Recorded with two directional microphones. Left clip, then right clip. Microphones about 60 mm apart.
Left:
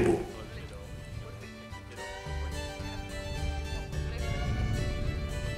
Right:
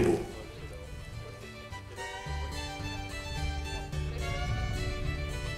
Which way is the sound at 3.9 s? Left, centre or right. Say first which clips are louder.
Left 1 dB; centre.